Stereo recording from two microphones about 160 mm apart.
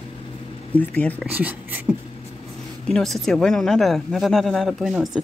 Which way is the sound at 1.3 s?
10° right (ahead or behind).